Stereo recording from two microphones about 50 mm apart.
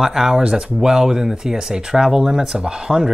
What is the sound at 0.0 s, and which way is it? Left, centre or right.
Speech, centre.